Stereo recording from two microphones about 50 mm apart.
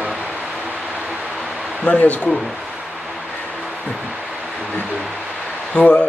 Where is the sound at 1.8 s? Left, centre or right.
Left.